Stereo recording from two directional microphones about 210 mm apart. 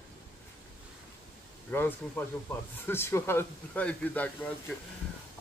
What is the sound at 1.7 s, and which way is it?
Speech, 10° left (ahead or behind).